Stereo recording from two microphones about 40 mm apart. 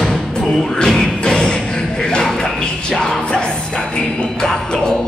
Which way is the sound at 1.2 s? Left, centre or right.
Centre.